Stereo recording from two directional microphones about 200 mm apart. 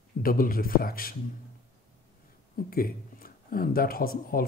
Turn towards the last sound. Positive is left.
turn(degrees=45)  # may be behind; listen again after turning